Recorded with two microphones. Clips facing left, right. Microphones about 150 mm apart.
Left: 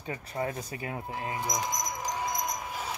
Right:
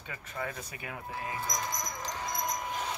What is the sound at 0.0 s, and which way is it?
Speech, 35° left (ahead or behind).